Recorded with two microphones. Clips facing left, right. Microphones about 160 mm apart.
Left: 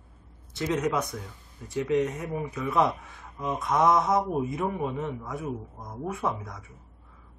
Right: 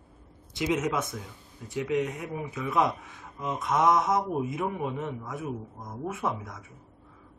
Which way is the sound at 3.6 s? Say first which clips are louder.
Left 1 dB; centre (ahead or behind).